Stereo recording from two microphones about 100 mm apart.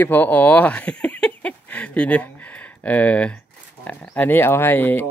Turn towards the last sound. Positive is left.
turn(degrees=20)  # may be behind; listen again after turning